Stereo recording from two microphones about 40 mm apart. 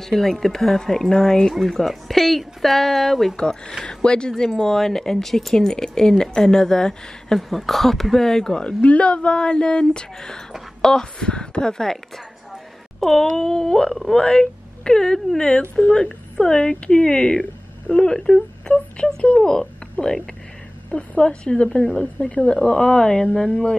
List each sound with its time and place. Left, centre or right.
0.0 s speech: centre
3.3 s speech: centre
7.3 s speech: centre
8.6 s speech: left; by 12.0 s centre
13.0 s a woman's voice: centre
20.9 s speech: left; by 23.8 s centre